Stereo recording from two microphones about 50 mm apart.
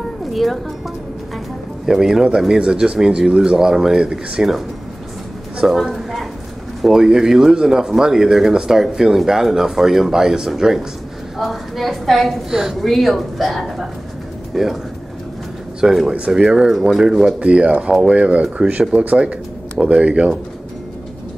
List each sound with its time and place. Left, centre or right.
0.3 s speech: centre
1.9 s a woman's voice: centre
12.4 s speech: centre
12.8 s a woman's voice: centre
15.8 s a woman's voice: centre
16.1 s speech: centre
17.4 s speech: right